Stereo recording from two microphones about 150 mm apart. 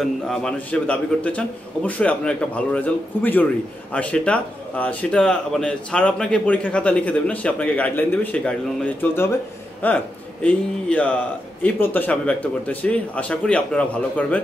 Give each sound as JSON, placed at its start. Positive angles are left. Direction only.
{"t": 0.0, "sound": "a man's voice", "side_deg": 5}